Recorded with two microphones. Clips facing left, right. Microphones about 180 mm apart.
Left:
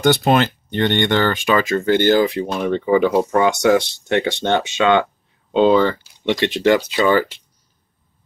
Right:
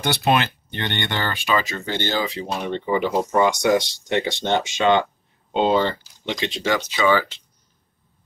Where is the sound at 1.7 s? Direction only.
50° left (ahead or behind).